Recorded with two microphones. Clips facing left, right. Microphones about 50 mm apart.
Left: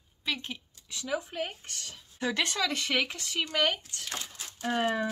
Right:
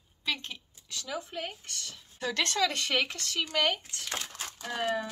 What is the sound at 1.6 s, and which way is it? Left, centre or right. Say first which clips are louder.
Speech: even; left.